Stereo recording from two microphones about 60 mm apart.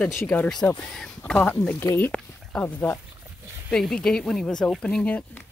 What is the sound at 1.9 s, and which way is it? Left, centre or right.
Speech, left.